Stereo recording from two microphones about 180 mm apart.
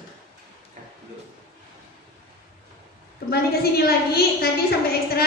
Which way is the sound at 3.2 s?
60° left (ahead or behind).